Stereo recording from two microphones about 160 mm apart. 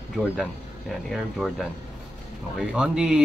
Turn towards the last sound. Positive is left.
turn(degrees=-5)  # may be behind; listen again after turning